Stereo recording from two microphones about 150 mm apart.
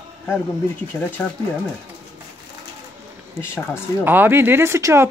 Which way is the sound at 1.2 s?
10° left (ahead or behind).